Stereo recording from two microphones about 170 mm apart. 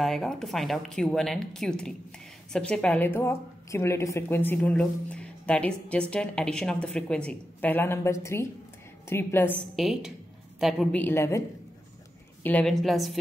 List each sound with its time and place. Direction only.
0.0 s speech: centre (ahead or behind)
9.8 s a woman's voice: centre (ahead or behind)
11.0 s speech: 15° left (ahead or behind)
12.4 s a woman's voice: 5° left (ahead or behind)